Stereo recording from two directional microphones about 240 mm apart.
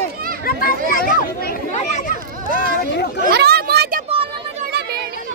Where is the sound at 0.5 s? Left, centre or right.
Left.